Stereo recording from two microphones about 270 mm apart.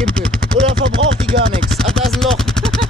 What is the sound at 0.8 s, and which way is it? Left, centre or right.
Chopping, right.